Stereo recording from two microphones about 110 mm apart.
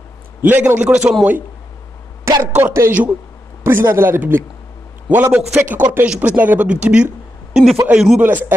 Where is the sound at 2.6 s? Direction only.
20° right (ahead or behind).